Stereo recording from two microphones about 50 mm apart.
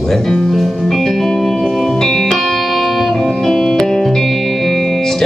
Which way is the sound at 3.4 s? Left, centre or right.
Centre.